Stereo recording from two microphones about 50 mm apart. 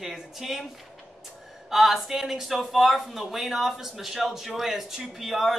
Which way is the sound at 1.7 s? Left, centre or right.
Centre.